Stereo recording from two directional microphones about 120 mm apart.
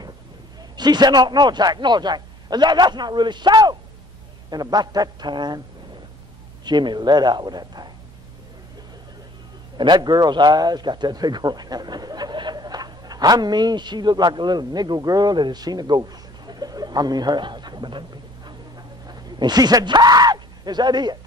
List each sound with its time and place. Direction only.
0.7 s speech: 35° right (ahead or behind)
6.6 s speech: 40° right (ahead or behind)
9.8 s a man's voice: 40° right (ahead or behind)